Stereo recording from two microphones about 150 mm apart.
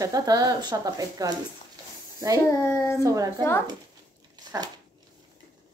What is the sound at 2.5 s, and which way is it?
Speech, 20° left (ahead or behind).